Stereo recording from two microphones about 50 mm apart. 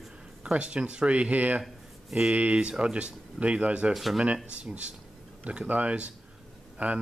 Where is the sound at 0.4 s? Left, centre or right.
Right.